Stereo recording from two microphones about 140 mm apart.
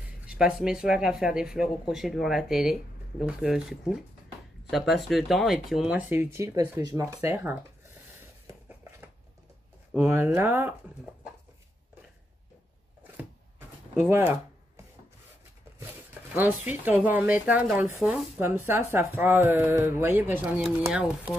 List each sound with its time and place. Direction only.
0.3 s speech: 5° right (ahead or behind)
8.5 s a sound: 15° right (ahead or behind)
9.9 s speech: 15° right (ahead or behind)
13.0 s a sound: 15° right (ahead or behind)
14.0 s speech: 15° right (ahead or behind)
15.8 s speech: 15° right (ahead or behind)